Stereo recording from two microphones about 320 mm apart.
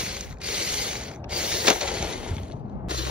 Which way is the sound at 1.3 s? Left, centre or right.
Centre.